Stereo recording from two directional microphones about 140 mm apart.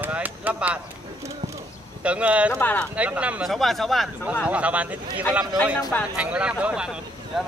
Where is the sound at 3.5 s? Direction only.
Centre (ahead or behind).